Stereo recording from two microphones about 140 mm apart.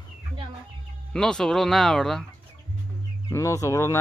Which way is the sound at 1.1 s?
5° left (ahead or behind).